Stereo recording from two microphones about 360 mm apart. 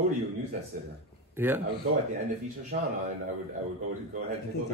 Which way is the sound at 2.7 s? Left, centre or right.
Right.